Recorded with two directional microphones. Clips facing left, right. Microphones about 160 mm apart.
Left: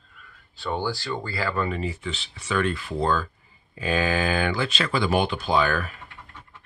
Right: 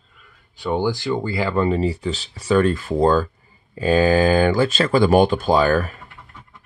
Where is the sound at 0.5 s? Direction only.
15° right (ahead or behind); by 5.9 s 40° right (ahead or behind).